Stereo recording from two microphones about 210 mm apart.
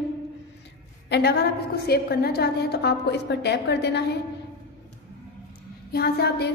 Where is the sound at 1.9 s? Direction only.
50° left (ahead or behind).